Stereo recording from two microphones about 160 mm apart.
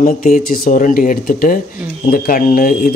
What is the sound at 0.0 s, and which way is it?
Speech, 60° left (ahead or behind).